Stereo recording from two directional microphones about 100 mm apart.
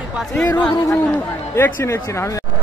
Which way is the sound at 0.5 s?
15° left (ahead or behind).